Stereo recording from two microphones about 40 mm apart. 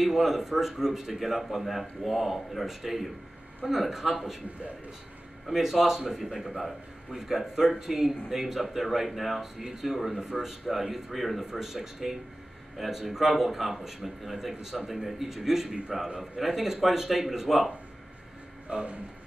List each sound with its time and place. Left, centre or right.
0.0 s speech: centre
5.5 s speech: centre
18.7 s speech: right